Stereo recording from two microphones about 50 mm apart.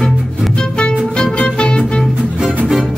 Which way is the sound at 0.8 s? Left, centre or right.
Centre.